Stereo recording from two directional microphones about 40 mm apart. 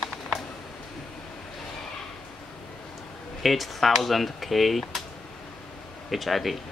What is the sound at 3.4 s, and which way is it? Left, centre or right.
Speech, centre.